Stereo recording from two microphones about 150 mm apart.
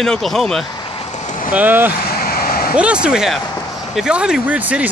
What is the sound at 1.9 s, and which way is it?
Vehicle, 85° left.